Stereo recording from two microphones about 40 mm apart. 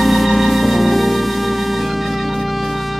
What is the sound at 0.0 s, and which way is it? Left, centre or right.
Music, centre.